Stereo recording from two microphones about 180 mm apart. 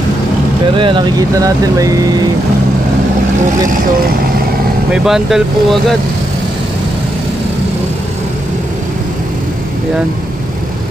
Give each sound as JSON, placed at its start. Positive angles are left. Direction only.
{"t": 0.7, "sound": "speech", "side_deg": -25}
{"t": 4.9, "sound": "speech", "side_deg": 0}